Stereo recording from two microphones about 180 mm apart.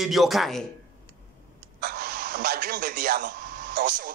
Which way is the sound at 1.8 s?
55° right (ahead or behind).